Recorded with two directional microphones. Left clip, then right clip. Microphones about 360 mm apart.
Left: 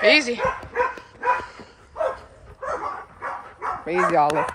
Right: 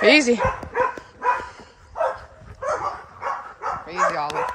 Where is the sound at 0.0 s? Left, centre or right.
Centre.